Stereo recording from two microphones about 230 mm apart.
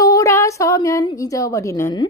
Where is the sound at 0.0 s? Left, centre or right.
Centre.